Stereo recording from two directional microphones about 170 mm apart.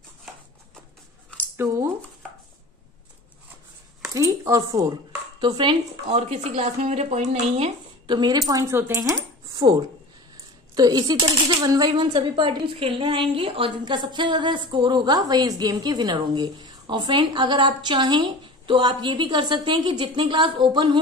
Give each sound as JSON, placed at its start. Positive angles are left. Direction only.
{"t": 1.6, "sound": "speech", "side_deg": -15}
{"t": 4.1, "sound": "a sound", "side_deg": -20}
{"t": 5.4, "sound": "a woman's voice", "side_deg": -25}
{"t": 6.0, "sound": "a woman's voice", "side_deg": -40}